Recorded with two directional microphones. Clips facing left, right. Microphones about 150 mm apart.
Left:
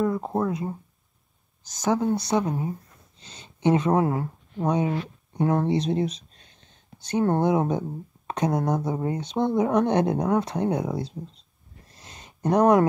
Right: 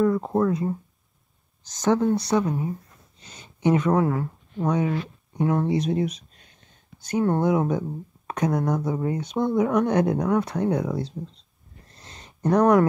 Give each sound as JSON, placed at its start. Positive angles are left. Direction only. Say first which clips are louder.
{"t": 0.0, "sound": "speech", "louder": "right 3 dB", "side_deg": 15}
{"t": 1.8, "sound": "speech", "louder": "right 3 dB", "side_deg": 15}
{"t": 2.3, "sound": "speech", "louder": "right 1 dB", "side_deg": 30}
{"t": 3.2, "sound": "a sound", "louder": "right 1 dB", "side_deg": 25}
{"t": 5.4, "sound": "speech", "louder": "even", "side_deg": 35}
{"t": 12.0, "sound": "a sound", "louder": "right 2 dB", "side_deg": 15}